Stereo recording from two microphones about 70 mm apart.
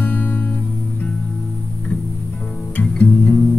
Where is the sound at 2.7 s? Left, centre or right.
Left.